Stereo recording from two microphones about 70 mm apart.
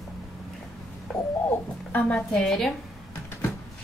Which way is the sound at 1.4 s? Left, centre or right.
Left.